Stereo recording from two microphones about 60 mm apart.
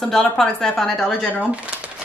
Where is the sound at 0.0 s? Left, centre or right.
Centre.